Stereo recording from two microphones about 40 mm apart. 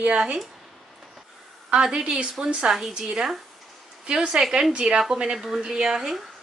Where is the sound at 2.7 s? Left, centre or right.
Centre.